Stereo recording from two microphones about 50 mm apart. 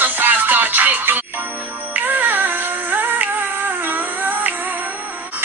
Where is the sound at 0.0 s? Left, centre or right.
Right.